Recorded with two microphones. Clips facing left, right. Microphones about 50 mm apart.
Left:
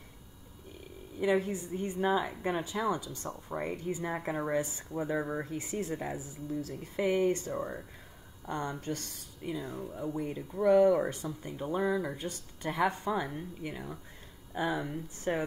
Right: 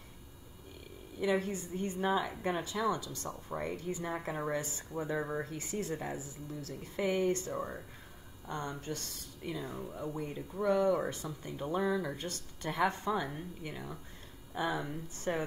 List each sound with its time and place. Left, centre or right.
1.2 s speech: left
7.5 s speech: centre
8.5 s speech: left
9.4 s speech: centre